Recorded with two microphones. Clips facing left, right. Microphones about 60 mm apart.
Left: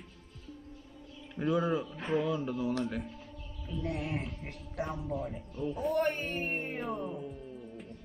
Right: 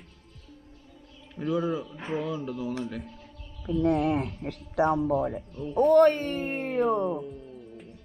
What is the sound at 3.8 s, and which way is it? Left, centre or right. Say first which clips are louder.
Speech: right 11 dB; right.